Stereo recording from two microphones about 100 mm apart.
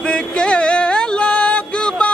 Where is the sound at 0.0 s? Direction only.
10° left (ahead or behind).